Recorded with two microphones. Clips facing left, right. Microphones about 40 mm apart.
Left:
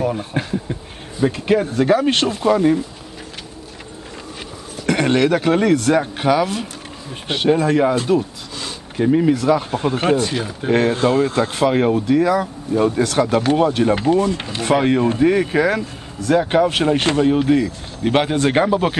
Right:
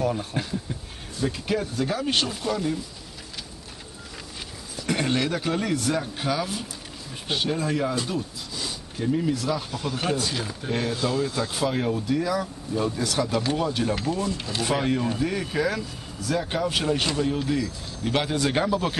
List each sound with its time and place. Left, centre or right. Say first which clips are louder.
0.0 s speech: left 5 dB; left
4.8 s speech: left 9 dB; left
14.8 s speech: left 9 dB; left